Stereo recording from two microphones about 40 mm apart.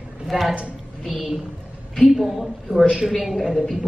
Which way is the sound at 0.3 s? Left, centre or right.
Centre.